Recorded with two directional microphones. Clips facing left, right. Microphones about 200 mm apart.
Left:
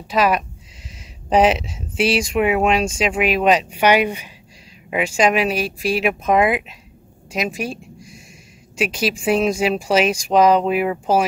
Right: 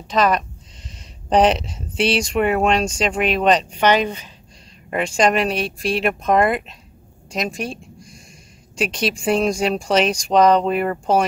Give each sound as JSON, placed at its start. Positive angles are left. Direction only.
{"t": 0.1, "sound": "speech", "side_deg": 5}